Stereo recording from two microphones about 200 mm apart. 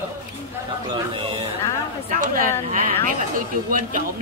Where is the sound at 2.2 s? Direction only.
45° right (ahead or behind).